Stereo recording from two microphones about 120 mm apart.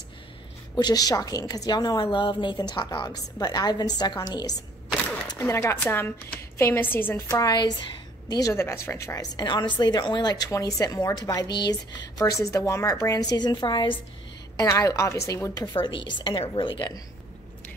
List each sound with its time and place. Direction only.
0.7 s a woman's voice: 35° left (ahead or behind)
5.4 s a woman's voice: 25° left (ahead or behind)
7.2 s a woman's voice: 30° left (ahead or behind)
14.6 s a woman's voice: 25° left (ahead or behind)
15.6 s a woman's voice: 45° left (ahead or behind)